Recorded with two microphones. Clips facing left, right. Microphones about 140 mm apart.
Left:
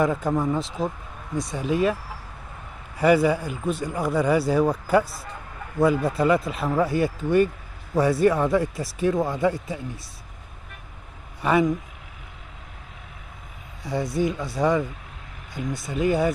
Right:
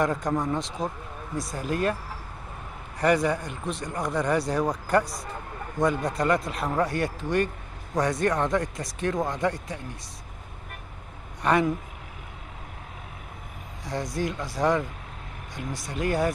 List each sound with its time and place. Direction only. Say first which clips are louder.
0.0 s speech: left 3 dB; 5° left (ahead or behind)
3.0 s speech: left 4 dB; 5° left (ahead or behind)
11.4 s speech: left 2 dB; 5° left (ahead or behind)
13.8 s speech: left 5 dB; centre (ahead or behind)